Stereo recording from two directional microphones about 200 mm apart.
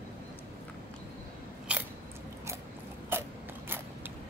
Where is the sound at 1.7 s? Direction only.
5° right (ahead or behind).